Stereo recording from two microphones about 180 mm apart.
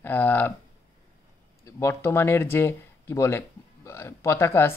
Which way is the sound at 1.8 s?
15° left (ahead or behind).